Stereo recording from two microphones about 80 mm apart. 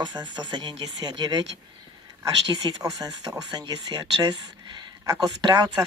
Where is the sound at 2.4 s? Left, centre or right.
Right.